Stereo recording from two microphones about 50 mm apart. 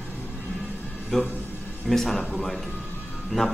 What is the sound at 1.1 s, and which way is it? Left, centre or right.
Speech, centre.